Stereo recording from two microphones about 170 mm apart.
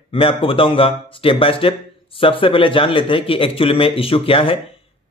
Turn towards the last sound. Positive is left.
turn(degrees=30)  # may be behind; listen again after turning